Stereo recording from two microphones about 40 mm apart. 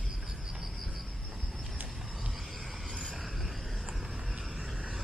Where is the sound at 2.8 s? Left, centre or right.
Centre.